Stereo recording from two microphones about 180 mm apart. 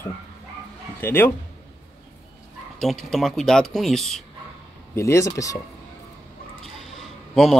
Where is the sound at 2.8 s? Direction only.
Centre (ahead or behind).